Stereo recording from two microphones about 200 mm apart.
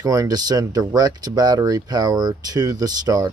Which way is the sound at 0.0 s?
15° right (ahead or behind).